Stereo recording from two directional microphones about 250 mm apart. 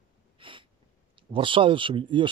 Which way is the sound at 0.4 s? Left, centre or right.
Centre.